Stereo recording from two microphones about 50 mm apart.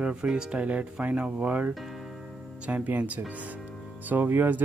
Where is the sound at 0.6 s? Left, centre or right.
Right.